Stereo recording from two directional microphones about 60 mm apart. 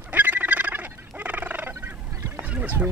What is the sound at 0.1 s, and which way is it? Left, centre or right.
Fowl, right.